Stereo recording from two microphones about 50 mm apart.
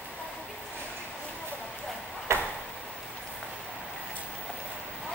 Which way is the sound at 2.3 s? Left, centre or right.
Right.